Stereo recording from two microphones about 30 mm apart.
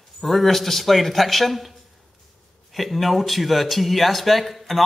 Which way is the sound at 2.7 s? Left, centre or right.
Centre.